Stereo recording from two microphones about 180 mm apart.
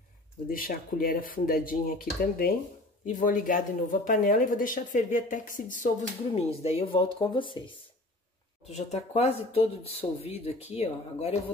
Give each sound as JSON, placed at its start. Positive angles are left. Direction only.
{"t": 0.5, "sound": "speech", "side_deg": 50}
{"t": 6.3, "sound": "speech", "side_deg": 35}
{"t": 8.7, "sound": "speech", "side_deg": 35}